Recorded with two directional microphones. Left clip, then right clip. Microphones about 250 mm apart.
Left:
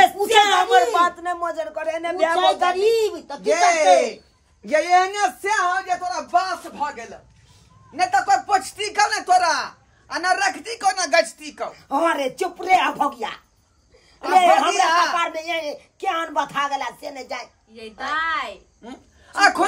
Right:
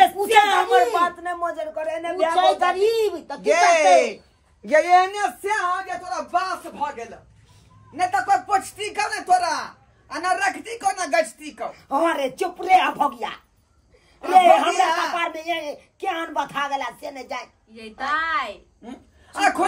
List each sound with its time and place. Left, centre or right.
0.0 s a sound: centre
3.5 s speech: right
3.9 s a man's voice: centre